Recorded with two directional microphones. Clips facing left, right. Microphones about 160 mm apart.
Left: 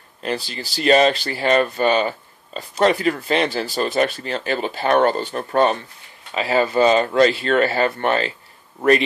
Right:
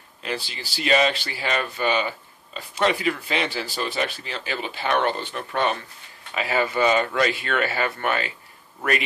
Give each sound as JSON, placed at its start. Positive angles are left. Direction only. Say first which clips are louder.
{"t": 0.2, "sound": "speech", "louder": "left 5 dB", "side_deg": 40}